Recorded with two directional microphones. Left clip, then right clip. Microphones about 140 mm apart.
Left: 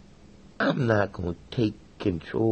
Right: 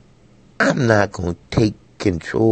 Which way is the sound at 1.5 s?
90° right.